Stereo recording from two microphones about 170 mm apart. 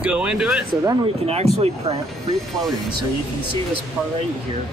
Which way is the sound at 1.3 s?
35° right (ahead or behind).